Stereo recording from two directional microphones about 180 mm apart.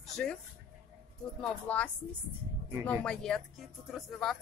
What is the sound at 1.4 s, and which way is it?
Speech, 5° left (ahead or behind).